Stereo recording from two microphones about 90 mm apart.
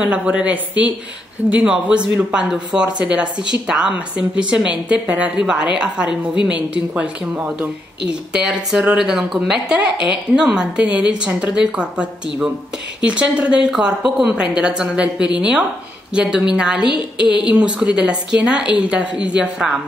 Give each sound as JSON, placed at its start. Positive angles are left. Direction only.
{"t": 0.0, "sound": "a woman's voice", "side_deg": -10}